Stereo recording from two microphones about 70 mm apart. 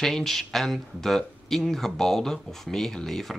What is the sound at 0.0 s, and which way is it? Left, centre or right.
Speech, centre.